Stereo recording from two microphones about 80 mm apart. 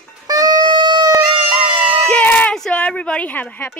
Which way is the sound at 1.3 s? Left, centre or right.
Right.